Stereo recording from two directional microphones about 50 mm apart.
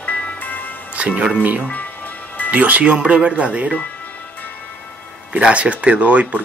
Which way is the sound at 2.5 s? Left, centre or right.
Right.